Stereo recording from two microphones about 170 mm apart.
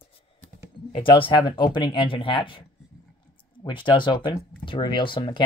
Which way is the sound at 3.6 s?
30° left (ahead or behind).